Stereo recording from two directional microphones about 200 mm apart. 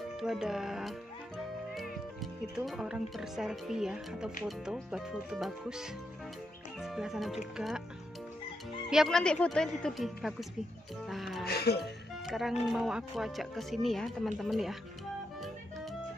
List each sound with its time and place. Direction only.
0.2 s speech: centre (ahead or behind)
2.5 s speech: centre (ahead or behind)
8.9 s speech: centre (ahead or behind)
11.1 s music: centre (ahead or behind)
11.4 s speech: 55° left (ahead or behind)
12.3 s speech: centre (ahead or behind)